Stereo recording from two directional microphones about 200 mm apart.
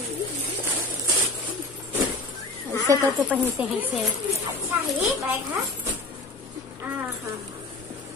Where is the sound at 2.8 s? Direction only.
15° right (ahead or behind).